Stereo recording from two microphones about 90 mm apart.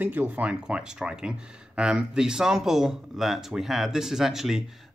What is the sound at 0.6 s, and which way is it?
Speech, 10° right (ahead or behind).